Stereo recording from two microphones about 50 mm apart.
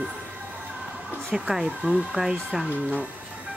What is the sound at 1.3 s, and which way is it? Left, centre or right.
Speech, centre.